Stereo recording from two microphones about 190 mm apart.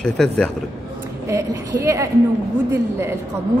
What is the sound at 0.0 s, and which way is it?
Speech, 5° left (ahead or behind).